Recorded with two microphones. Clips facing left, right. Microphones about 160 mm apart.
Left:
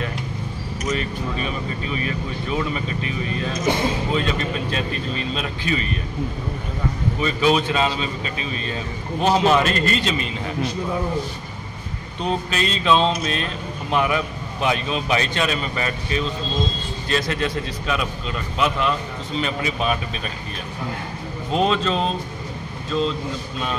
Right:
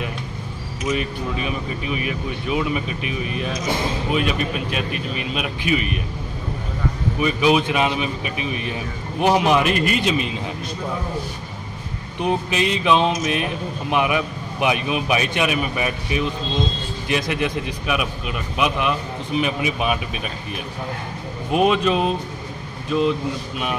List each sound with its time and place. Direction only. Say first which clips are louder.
0.8 s speech: right 2 dB; 10° right (ahead or behind)
7.2 s speech: right 2 dB; 10° right (ahead or behind)
12.2 s speech: right 2 dB; 15° right (ahead or behind)
21.5 s speech: right 3 dB; 15° right (ahead or behind)